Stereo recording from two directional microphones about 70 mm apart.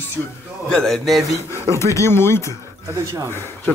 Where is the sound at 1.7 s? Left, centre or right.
Left.